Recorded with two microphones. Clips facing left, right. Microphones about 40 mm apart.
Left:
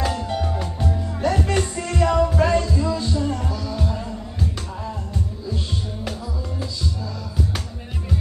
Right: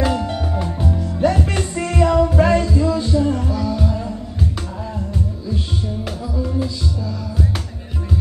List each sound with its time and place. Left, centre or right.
0.0 s music: centre